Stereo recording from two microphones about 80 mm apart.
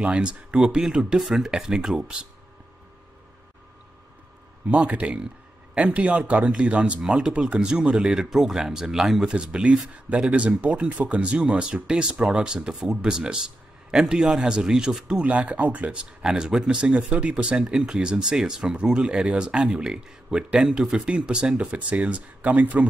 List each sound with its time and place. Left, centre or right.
0.0 s speech: centre
4.6 s speech: centre